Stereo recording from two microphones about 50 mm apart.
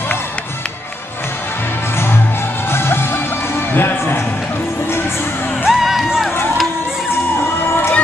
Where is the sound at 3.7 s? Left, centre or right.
Left.